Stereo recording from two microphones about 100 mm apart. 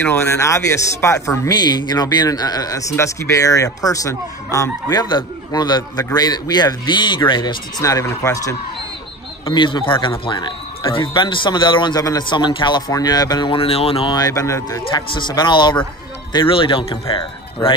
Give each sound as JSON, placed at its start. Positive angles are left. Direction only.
{"t": 0.0, "sound": "speech", "side_deg": 25}
{"t": 1.5, "sound": "a man's voice", "side_deg": 45}
{"t": 7.8, "sound": "a man's voice", "side_deg": 35}
{"t": 9.5, "sound": "a man's voice", "side_deg": 50}
{"t": 13.5, "sound": "speech", "side_deg": 70}
{"t": 14.1, "sound": "a man's voice", "side_deg": 35}
{"t": 14.9, "sound": "a man's voice", "side_deg": 50}